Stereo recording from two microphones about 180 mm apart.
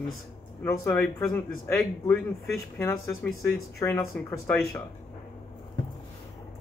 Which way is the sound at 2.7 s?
15° left (ahead or behind).